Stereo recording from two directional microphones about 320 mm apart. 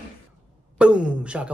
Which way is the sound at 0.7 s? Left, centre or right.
Centre.